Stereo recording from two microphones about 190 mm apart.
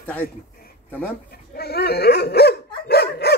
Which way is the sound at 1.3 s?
55° left (ahead or behind).